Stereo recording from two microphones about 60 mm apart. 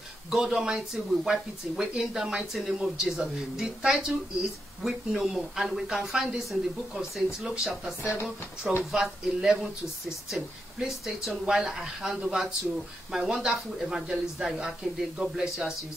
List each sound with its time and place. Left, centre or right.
0.3 s speech: centre
8.0 s speech: left
8.9 s speech: centre